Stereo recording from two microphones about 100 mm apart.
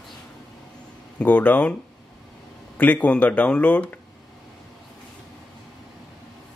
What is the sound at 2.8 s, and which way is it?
Speech, 15° left (ahead or behind).